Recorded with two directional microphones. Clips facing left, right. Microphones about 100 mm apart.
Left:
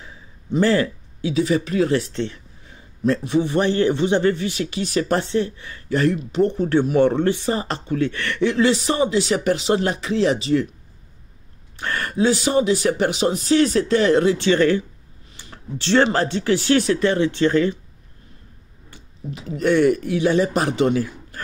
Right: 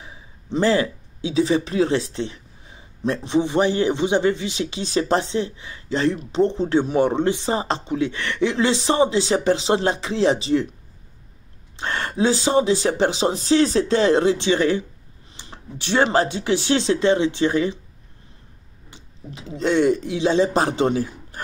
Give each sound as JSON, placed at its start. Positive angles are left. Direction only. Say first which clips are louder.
{"t": 0.5, "sound": "a sound", "louder": "left 1 dB", "side_deg": -20}
{"t": 1.3, "sound": "speech", "louder": "even", "side_deg": -30}
{"t": 11.7, "sound": "speech", "louder": "left 1 dB", "side_deg": -25}
{"t": 14.4, "sound": "speech", "louder": "left 2 dB", "side_deg": -20}
{"t": 15.4, "sound": "a sound", "louder": "right 1 dB", "side_deg": -20}
{"t": 15.8, "sound": "speech", "louder": "left 1 dB", "side_deg": -15}
{"t": 19.5, "sound": "speech", "louder": "left 2 dB", "side_deg": -20}